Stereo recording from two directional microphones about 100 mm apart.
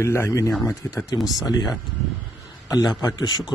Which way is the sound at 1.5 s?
45° left (ahead or behind).